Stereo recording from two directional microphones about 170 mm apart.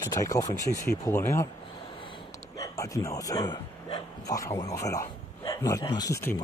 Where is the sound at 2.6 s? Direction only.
20° left (ahead or behind).